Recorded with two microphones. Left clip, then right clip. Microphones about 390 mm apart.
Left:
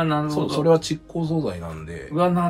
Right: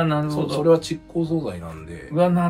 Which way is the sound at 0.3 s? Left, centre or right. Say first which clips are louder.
Right 1 dB; left.